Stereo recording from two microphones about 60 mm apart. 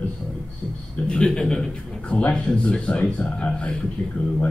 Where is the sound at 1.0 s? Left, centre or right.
Centre.